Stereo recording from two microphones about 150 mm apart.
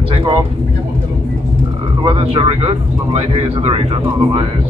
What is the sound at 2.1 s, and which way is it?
Speech, 40° right (ahead or behind).